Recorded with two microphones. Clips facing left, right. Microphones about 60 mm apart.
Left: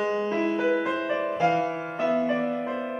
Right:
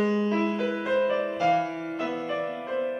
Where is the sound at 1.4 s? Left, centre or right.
Left.